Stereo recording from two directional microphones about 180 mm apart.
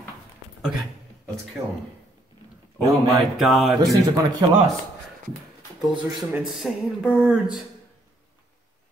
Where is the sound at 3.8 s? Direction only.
20° right (ahead or behind).